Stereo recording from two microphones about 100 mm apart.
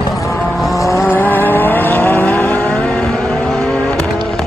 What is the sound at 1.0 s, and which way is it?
Vehicle, 20° left (ahead or behind).